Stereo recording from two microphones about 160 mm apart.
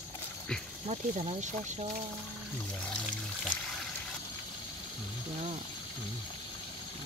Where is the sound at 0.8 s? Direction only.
40° right (ahead or behind).